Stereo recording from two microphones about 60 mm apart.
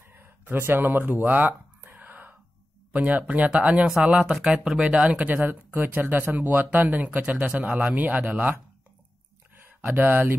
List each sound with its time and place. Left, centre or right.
0.1 s speech: right
1.8 s whispering: right
2.9 s a man's voice: right
3.9 s speech: centre
5.4 s speech: right
7.1 s a man's voice: centre
9.9 s speech: right